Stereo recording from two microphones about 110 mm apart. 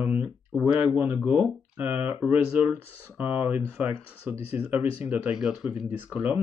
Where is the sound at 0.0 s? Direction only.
15° right (ahead or behind).